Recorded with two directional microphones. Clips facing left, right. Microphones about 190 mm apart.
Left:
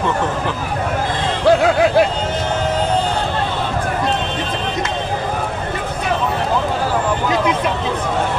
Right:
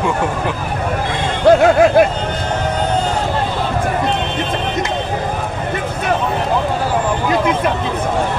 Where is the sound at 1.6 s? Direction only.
50° right (ahead or behind).